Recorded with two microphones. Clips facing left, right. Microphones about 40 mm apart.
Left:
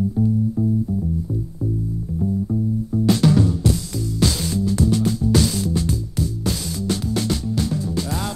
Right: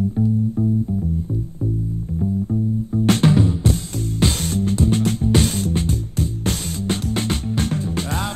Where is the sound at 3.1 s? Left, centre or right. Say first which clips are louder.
Even; right.